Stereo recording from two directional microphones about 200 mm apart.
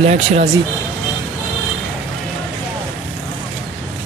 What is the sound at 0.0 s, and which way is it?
Speech, 35° right (ahead or behind).